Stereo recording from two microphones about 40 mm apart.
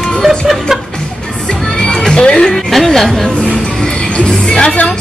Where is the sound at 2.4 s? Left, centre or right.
Centre.